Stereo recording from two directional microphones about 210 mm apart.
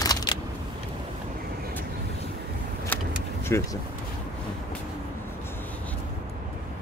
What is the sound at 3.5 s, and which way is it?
Speech, 15° left (ahead or behind).